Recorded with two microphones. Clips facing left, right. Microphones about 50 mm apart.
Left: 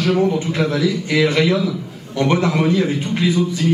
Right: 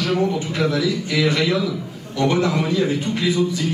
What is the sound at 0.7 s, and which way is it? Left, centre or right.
A man's voice, left.